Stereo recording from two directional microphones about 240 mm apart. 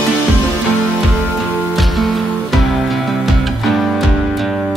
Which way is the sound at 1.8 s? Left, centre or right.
Centre.